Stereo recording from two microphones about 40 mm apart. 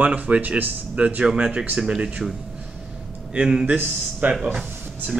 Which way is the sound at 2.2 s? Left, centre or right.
Centre.